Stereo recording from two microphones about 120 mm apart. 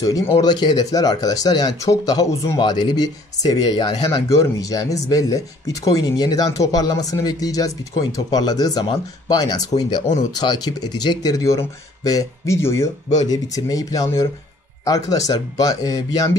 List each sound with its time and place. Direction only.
0.4 s speech: 35° left (ahead or behind)